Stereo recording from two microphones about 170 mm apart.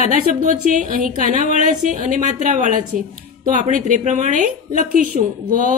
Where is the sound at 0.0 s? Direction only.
50° right (ahead or behind).